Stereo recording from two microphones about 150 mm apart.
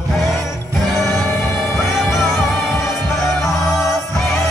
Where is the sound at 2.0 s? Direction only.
Centre (ahead or behind).